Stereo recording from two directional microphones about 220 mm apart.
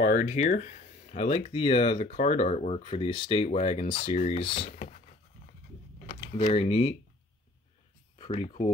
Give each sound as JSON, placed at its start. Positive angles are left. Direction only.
{"t": 0.0, "sound": "speech", "side_deg": 35}
{"t": 4.7, "sound": "patter", "side_deg": 35}
{"t": 6.0, "sound": "speech", "side_deg": 35}
{"t": 8.2, "sound": "speech", "side_deg": 30}